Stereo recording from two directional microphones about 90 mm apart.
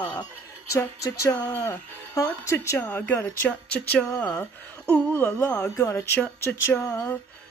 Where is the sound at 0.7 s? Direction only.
35° left (ahead or behind).